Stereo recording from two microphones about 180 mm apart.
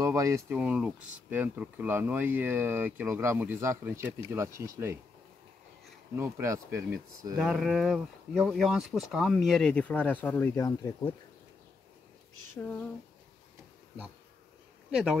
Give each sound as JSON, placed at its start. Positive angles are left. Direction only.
{"t": 0.0, "sound": "speech", "side_deg": -20}
{"t": 6.1, "sound": "speech", "side_deg": -15}
{"t": 7.3, "sound": "speech", "side_deg": -5}